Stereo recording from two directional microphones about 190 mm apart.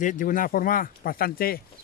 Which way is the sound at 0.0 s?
45° left (ahead or behind).